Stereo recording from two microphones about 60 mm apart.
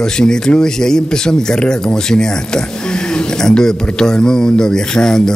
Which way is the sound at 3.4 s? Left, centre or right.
Centre.